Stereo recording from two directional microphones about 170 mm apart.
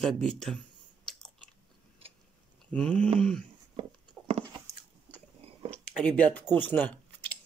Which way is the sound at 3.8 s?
35° right (ahead or behind).